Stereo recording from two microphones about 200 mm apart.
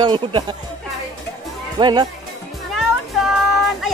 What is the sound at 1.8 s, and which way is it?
Speech, 20° right (ahead or behind).